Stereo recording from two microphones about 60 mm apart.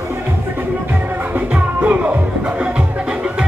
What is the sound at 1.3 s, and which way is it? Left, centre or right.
Music, right.